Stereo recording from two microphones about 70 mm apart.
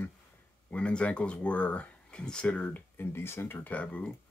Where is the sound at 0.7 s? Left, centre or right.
Centre.